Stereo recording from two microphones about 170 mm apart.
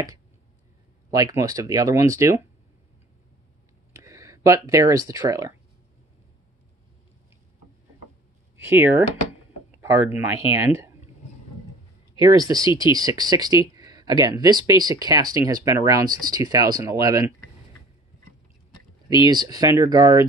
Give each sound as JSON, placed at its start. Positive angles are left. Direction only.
{"t": 1.1, "sound": "speech", "side_deg": -20}
{"t": 3.9, "sound": "speech", "side_deg": -15}
{"t": 8.5, "sound": "speech", "side_deg": -10}
{"t": 12.2, "sound": "speech", "side_deg": -20}
{"t": 19.2, "sound": "speech", "side_deg": -25}